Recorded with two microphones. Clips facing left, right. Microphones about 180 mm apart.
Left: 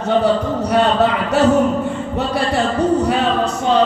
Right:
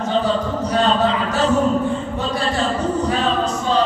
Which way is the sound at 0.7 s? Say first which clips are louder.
Left 2 dB; 65° left (ahead or behind).